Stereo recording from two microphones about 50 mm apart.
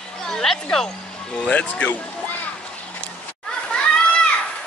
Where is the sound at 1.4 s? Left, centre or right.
Left.